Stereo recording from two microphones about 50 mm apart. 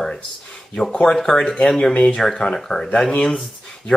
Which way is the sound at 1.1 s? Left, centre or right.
Centre.